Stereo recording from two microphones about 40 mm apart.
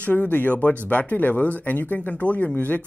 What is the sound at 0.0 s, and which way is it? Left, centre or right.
Speech, left.